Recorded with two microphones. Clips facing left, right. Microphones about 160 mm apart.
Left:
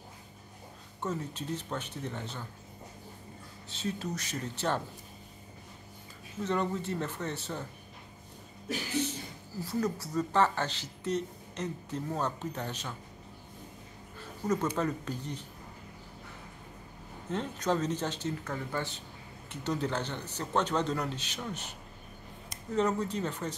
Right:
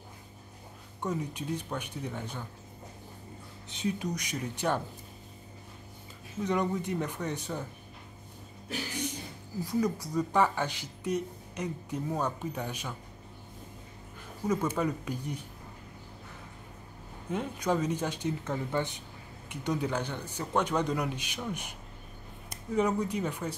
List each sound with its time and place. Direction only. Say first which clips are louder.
1.0 s speech: right 2 dB; 15° right (ahead or behind)
3.6 s speech: right 3 dB; 15° right (ahead or behind)
6.4 s speech: right 2 dB; 15° right (ahead or behind)
9.6 s speech: right 2 dB; 15° right (ahead or behind)
14.4 s speech: right 1 dB; 10° right (ahead or behind)
17.3 s speech: right 1 dB; 10° right (ahead or behind)
22.8 s speech: right 1 dB; 10° right (ahead or behind)